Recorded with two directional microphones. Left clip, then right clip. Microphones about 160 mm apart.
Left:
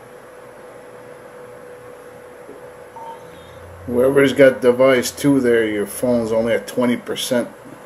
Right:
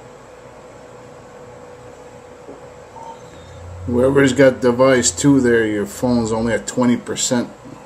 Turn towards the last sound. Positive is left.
turn(degrees=-20)  # may be behind; listen again after turning